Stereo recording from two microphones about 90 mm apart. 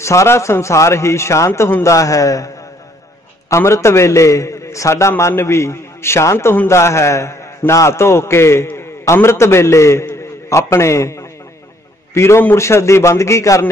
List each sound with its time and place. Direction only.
0.0 s a man's voice: 30° left (ahead or behind)